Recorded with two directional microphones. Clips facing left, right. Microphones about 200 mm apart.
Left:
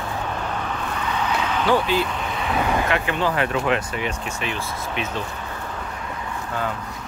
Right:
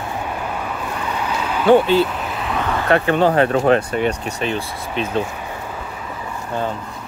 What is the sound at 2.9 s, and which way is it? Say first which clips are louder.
Speech: right 7 dB; 40° right (ahead or behind).